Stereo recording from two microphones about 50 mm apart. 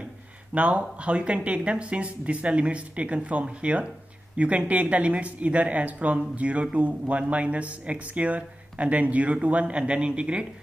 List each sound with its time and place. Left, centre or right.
0.6 s speech: right